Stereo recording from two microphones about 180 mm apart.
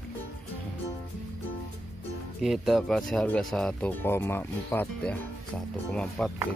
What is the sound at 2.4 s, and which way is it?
Speech, centre (ahead or behind).